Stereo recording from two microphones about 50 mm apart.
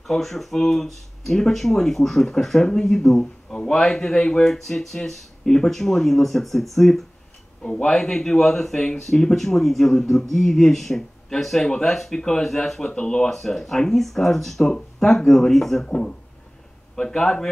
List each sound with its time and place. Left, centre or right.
0.0 s speech: centre
7.6 s speech: centre
12.8 s speech: centre
13.3 s speech: centre
16.9 s speech: centre